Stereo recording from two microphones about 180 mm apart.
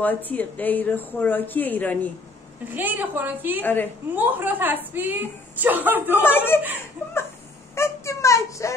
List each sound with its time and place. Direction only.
0.0 s a woman's voice: 10° left (ahead or behind)
2.7 s speech: 10° right (ahead or behind)
3.6 s a woman's voice: 10° left (ahead or behind)
4.1 s speech: 10° right (ahead or behind)
6.2 s a woman's voice: 10° left (ahead or behind)
7.7 s a sound: 15° left (ahead or behind)